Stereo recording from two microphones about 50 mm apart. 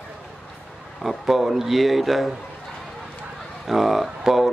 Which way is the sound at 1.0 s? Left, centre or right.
Centre.